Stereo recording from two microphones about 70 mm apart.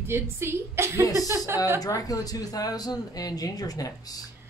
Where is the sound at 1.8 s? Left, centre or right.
Left.